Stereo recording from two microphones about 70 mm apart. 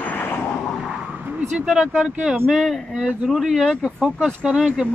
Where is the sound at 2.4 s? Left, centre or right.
Centre.